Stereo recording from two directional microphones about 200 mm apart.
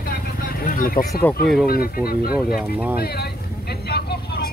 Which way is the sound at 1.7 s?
50° left (ahead or behind).